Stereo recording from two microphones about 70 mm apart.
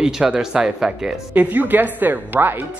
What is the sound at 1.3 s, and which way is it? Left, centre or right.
A woman's voice, right.